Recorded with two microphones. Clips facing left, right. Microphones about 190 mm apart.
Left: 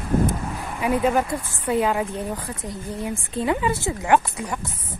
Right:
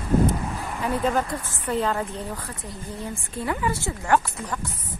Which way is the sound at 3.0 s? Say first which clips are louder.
Left 5 dB; 20° left (ahead or behind).